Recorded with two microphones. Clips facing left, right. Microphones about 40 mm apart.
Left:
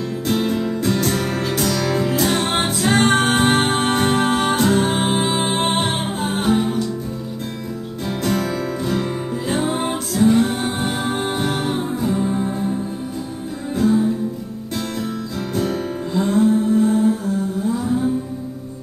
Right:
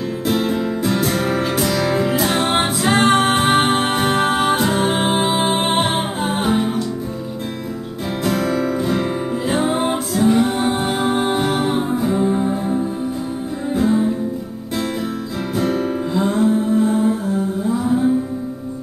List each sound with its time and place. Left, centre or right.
0.3 s music: centre
8.2 s music: centre
16.2 s mantra: centre